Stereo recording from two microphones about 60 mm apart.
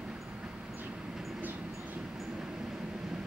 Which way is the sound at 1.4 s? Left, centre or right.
Right.